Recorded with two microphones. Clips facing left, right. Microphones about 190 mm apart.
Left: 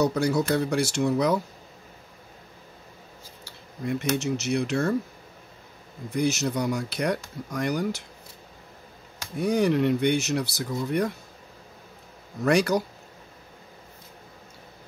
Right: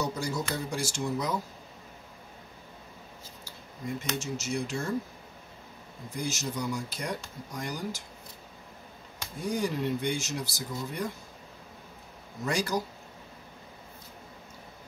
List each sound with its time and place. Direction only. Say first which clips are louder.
0.0 s speech: left 9 dB; 70° left (ahead or behind)
3.8 s speech: left 8 dB; 70° left (ahead or behind)
6.1 s speech: left 9 dB; 65° left (ahead or behind)
9.4 s speech: left 8 dB; 65° left (ahead or behind)
12.4 s speech: left 8 dB; 65° left (ahead or behind)